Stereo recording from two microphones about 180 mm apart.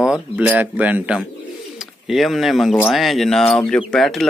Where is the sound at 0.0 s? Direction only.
5° right (ahead or behind).